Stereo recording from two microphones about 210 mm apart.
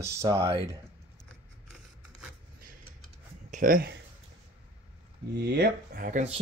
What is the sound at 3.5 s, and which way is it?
Speech, 40° right (ahead or behind).